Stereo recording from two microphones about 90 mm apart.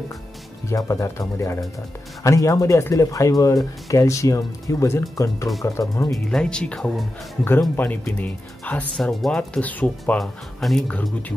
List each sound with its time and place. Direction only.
0.7 s speech: 35° left (ahead or behind)
6.1 s speech: 5° left (ahead or behind)
7.7 s speech: 25° left (ahead or behind)
8.9 s speech: 5° left (ahead or behind)
10.1 s speech: 5° left (ahead or behind)